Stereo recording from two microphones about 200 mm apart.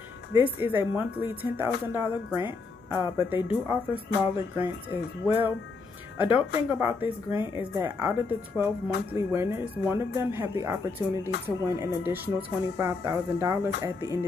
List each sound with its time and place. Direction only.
0.3 s speech: 10° right (ahead or behind)